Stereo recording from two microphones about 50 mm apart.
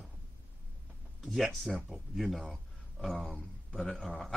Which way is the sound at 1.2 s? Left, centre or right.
Centre.